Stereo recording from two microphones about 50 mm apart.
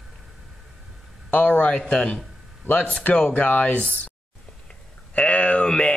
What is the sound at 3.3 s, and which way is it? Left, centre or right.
Speech, left.